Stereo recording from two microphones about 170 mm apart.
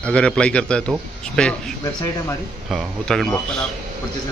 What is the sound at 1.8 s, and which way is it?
Speech, 20° left (ahead or behind).